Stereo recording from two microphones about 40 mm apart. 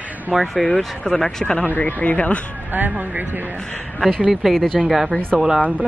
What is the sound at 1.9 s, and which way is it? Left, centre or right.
Speech, left.